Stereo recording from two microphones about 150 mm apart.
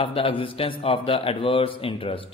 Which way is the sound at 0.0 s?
35° left (ahead or behind).